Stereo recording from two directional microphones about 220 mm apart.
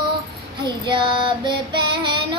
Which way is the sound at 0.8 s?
20° right (ahead or behind).